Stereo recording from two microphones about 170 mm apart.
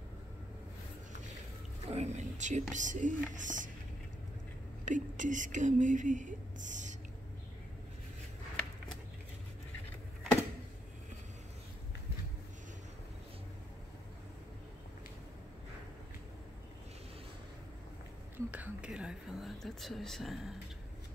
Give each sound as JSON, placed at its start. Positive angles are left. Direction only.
{"t": 1.9, "sound": "speech", "side_deg": -40}
{"t": 4.8, "sound": "speech", "side_deg": -50}
{"t": 18.5, "sound": "speech", "side_deg": -10}